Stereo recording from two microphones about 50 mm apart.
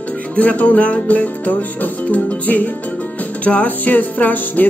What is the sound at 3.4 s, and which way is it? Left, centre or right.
Speech, left.